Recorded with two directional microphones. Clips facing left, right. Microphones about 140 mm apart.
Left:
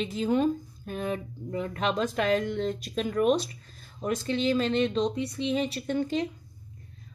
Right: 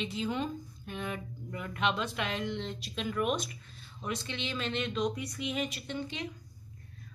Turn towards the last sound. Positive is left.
turn(degrees=45)  # may be behind; listen again after turning